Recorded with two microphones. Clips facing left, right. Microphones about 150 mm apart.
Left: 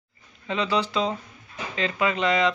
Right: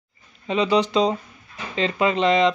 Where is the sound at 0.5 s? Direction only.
20° right (ahead or behind).